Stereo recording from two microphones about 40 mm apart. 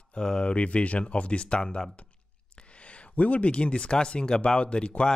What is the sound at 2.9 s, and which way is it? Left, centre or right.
Speech, left.